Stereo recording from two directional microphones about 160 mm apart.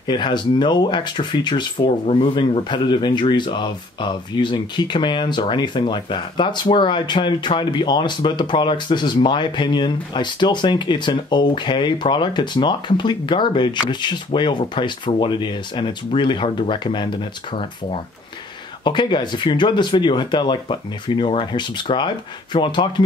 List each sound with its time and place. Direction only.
0.0 s speech: 30° left (ahead or behind)
18.9 s speech: 30° left (ahead or behind)